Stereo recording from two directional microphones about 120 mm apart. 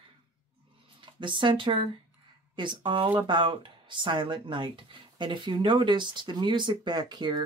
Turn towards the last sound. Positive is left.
turn(degrees=-35)  # may be behind; listen again after turning